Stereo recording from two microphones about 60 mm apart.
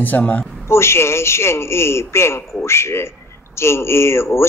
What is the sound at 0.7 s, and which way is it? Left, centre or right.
A man's voice, left.